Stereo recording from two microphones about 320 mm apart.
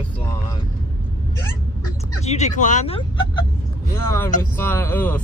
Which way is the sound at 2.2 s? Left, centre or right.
Left.